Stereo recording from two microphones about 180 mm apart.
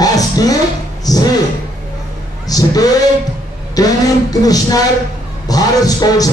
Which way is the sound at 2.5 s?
20° left (ahead or behind).